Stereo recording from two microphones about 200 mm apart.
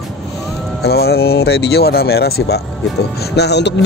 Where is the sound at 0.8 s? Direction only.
50° left (ahead or behind).